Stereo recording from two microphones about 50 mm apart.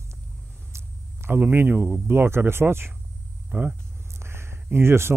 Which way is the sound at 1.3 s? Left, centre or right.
Right.